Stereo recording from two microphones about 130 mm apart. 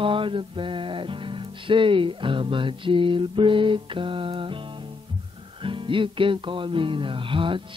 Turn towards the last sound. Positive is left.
turn(degrees=-40)  # may be behind; listen again after turning